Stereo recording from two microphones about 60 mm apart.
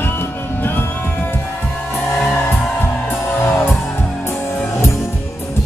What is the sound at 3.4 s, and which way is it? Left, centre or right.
Music, left.